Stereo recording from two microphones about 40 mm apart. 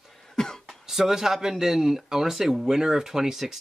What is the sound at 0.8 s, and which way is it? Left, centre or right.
Speech, centre.